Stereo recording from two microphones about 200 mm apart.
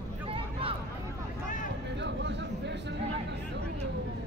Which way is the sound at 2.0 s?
60° right (ahead or behind).